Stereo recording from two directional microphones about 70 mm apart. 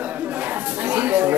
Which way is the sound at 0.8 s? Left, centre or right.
Right.